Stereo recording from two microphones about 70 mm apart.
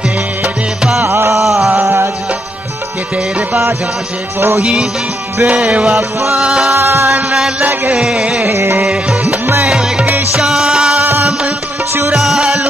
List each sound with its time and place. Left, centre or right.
1.0 s a sound: right
1.4 s a sound: centre
1.8 s music: right
4.6 s music: centre
6.7 s music: right
7.6 s music: right
8.0 s music: centre
8.5 s music: right
9.7 s music: centre
12.1 s music: centre